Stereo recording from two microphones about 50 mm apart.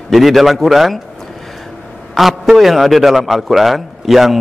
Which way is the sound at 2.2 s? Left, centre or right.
Centre.